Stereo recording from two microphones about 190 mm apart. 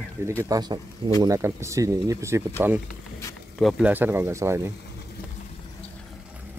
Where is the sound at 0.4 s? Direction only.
20° right (ahead or behind).